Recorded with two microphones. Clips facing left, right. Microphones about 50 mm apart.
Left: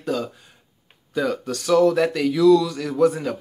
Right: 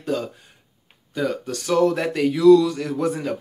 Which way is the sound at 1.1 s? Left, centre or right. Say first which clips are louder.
Left 1 dB; centre.